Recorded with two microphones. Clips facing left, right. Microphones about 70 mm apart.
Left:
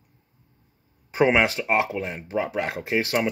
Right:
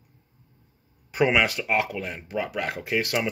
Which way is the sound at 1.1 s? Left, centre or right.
Left.